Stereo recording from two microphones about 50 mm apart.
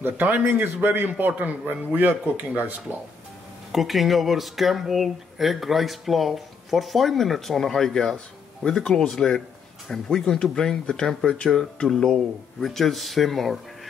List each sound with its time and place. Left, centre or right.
0.0 s a man's voice: right
1.6 s speech: right
3.7 s speech: centre
9.8 s speech: centre